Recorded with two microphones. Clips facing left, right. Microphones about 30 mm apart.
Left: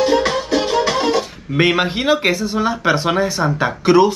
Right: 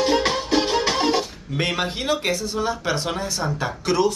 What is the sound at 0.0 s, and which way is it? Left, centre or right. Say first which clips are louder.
Music: left 4 dB; centre.